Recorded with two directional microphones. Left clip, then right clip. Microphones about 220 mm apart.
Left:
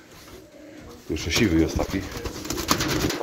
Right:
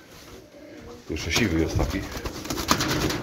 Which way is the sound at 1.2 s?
30° left (ahead or behind).